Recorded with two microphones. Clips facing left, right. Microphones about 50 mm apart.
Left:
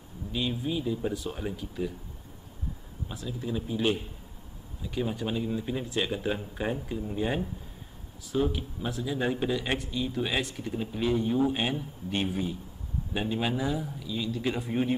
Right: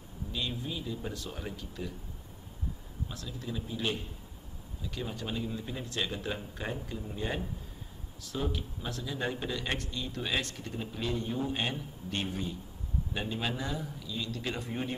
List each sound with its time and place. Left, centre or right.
0.3 s a man's voice: centre
3.1 s a man's voice: centre